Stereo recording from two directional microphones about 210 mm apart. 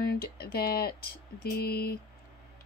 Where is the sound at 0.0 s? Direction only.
50° left (ahead or behind).